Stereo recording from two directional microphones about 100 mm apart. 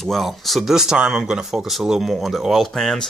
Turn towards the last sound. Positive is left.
turn(degrees=5)  # may be behind; listen again after turning